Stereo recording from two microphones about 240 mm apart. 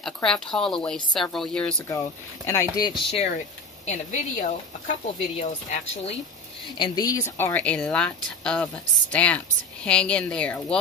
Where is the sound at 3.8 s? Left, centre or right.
Left.